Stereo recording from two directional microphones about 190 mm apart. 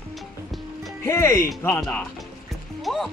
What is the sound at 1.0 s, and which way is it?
Speech, 15° left (ahead or behind).